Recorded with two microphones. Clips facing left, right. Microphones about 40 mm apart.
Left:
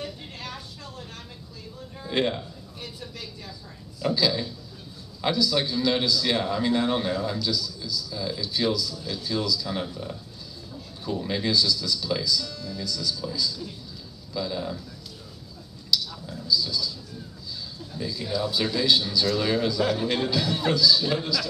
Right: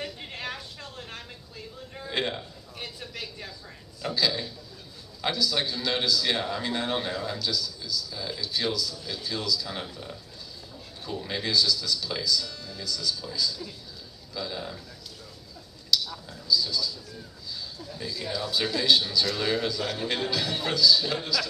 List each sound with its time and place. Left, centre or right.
0.0 s a sound: right
2.0 s a man's voice: centre
2.8 s speech: right
4.0 s a man's voice: centre
15.9 s a sound: centre
17.9 s a man's voice: centre